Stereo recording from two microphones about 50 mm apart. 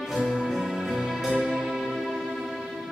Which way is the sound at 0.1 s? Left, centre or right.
Centre.